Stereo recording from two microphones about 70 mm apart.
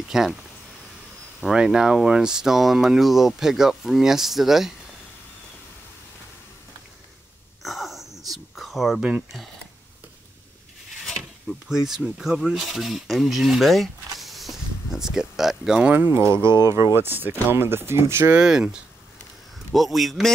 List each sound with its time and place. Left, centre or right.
0.1 s speech: centre
1.4 s speech: centre
7.6 s a sound: centre
9.0 s speech: centre
11.1 s speech: centre
14.2 s a sound: centre
16.1 s speech: right
18.3 s speech: centre